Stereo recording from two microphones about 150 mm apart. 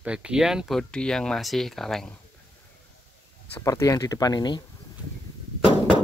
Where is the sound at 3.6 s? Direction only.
20° left (ahead or behind).